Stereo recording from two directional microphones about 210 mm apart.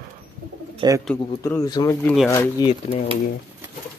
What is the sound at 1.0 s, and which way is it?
Speech, 10° left (ahead or behind).